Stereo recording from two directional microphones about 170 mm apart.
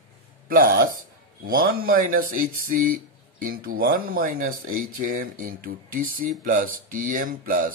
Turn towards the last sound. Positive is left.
turn(degrees=-55)  # may be behind; listen again after turning